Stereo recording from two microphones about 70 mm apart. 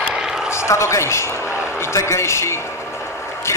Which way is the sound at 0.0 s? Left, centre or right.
Centre.